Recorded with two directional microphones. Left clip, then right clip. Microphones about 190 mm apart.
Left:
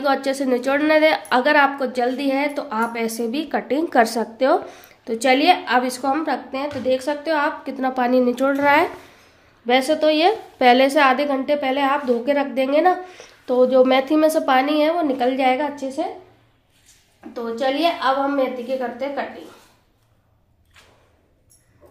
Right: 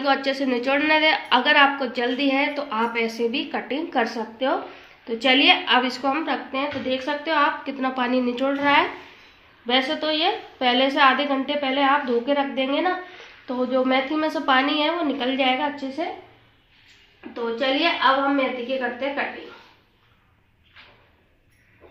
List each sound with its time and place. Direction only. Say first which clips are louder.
0.0 s a woman's voice: left 2 dB; 60° left (ahead or behind); by 4.6 s 75° left (ahead or behind)
5.0 s a woman's voice: left 2 dB; 65° left (ahead or behind)
9.7 s a woman's voice: left 5 dB; 70° left (ahead or behind)
17.3 s a woman's voice: left 1 dB; 80° left